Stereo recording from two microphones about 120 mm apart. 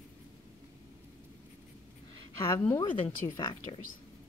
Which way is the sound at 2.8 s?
35° left (ahead or behind).